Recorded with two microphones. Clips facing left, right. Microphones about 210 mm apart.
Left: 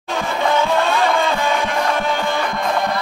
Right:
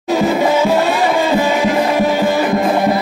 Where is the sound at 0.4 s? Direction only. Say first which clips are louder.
Right 4 dB; 5° right (ahead or behind).